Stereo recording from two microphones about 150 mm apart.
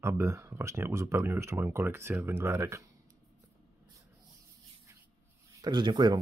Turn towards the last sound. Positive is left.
turn(degrees=-30)  # may be behind; listen again after turning